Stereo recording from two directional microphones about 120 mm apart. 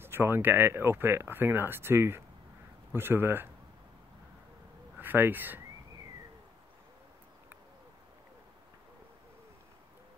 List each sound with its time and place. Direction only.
0.0 s speech: 20° right (ahead or behind)
4.9 s speech: 15° right (ahead or behind)